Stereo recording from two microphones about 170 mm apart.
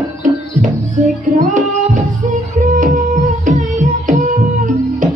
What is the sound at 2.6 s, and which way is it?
Music, 50° right (ahead or behind).